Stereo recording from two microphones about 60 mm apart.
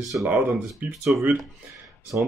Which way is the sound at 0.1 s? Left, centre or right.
Right.